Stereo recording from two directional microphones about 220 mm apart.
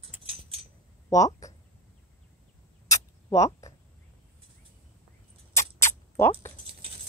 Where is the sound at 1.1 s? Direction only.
15° left (ahead or behind).